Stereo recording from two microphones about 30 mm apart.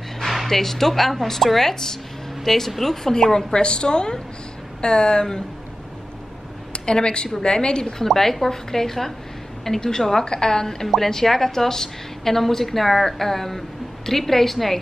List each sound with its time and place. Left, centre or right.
0.5 s a woman's voice: centre
3.5 s a woman's voice: left
6.7 s a woman's voice: left
8.0 s a woman's voice: centre